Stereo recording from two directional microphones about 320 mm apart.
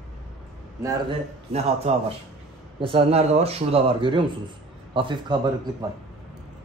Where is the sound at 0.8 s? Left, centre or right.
Centre.